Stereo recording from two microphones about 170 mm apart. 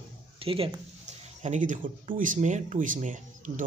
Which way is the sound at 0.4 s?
30° right (ahead or behind).